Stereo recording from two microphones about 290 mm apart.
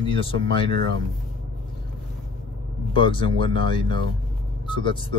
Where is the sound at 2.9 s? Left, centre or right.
Centre.